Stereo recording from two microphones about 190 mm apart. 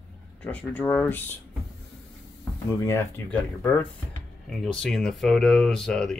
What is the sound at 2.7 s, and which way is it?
Speech, 15° left (ahead or behind).